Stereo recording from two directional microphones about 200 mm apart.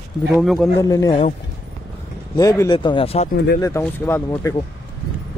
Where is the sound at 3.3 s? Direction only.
50° left (ahead or behind).